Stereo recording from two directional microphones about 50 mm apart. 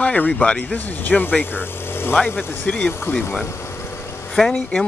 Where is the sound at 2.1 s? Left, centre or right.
Left.